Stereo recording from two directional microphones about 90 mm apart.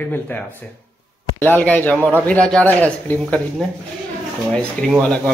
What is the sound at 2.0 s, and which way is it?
Speech, 25° right (ahead or behind).